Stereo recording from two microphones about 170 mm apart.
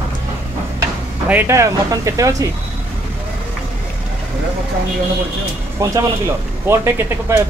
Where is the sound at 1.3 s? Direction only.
15° right (ahead or behind).